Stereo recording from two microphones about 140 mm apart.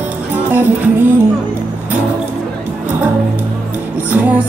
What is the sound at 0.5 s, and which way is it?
Music, 15° right (ahead or behind).